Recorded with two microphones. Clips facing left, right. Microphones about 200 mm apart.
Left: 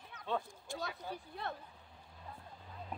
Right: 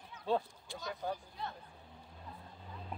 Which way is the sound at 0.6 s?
50° left (ahead or behind).